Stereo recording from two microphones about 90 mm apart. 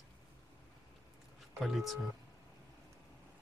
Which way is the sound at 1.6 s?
Centre (ahead or behind).